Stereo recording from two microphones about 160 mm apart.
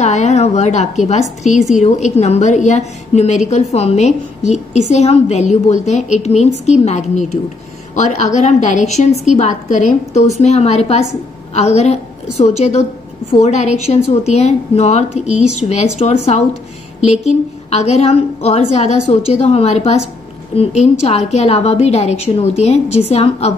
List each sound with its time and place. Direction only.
0.0 s a woman's voice: 45° left (ahead or behind)